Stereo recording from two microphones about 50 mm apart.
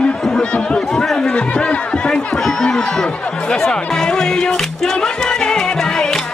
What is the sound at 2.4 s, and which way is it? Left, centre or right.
Chatter, centre.